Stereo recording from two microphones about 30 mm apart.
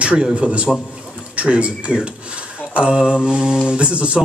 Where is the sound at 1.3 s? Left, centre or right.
Right.